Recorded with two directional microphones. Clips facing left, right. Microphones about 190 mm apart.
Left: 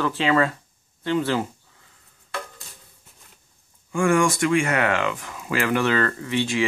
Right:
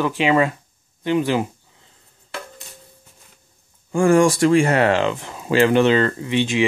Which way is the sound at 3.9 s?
35° right (ahead or behind).